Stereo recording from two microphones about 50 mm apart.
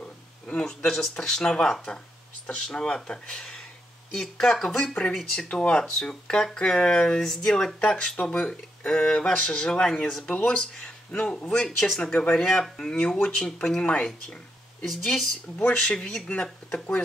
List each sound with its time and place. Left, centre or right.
0.7 s speech: centre
5.5 s speech: left
12.4 s speech: centre; by 14.0 s left
14.9 s speech: centre
15.8 s speech: centre